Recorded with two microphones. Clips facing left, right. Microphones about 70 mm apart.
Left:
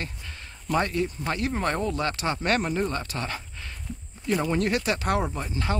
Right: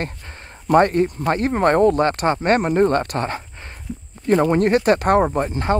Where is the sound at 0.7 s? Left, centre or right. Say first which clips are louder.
Right 10 dB; right.